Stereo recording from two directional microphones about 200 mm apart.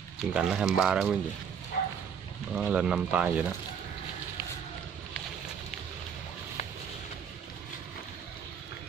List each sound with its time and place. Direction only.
0.3 s speech: 5° right (ahead or behind)
1.7 s bow-wow: 45° left (ahead or behind)
2.5 s speech: 5° right (ahead or behind)